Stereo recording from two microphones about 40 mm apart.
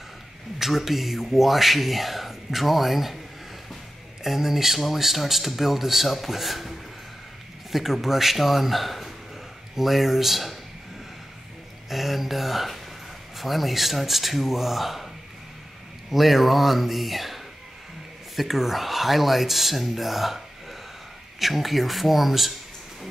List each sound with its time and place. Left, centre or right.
0.6 s speech: centre
4.2 s speech: centre
7.7 s speech: centre
11.9 s speech: centre
16.1 s speech: centre